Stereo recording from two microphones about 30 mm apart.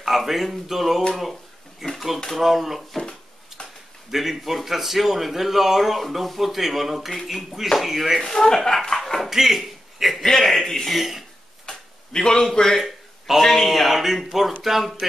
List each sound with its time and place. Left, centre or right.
0.0 s speech: centre
1.8 s a sound: centre
2.3 s speech: centre
3.0 s dishes: left
4.1 s speech: centre
8.2 s a man's voice: centre
8.9 s a sound: centre
9.3 s a man's voice: centre
10.2 s a man's voice: centre
10.9 s speech: centre
11.6 s a sound: left
12.5 s speech: centre
13.5 s speech: centre